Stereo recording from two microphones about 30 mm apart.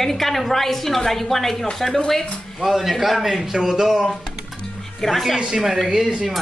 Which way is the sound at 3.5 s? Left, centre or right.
Right.